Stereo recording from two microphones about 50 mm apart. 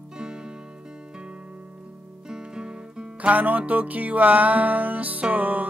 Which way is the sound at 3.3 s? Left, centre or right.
Right.